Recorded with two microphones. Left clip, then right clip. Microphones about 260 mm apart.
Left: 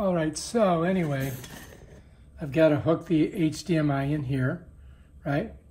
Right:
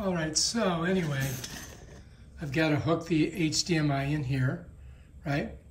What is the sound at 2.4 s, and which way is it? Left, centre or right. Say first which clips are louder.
Speech: left 7 dB; centre.